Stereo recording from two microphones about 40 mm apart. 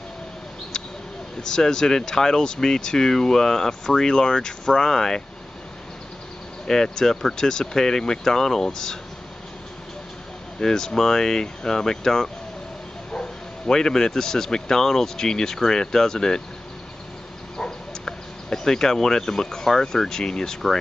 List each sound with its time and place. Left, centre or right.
1.4 s speech: centre
6.7 s speech: centre
10.6 s speech: centre
17.6 s speech: centre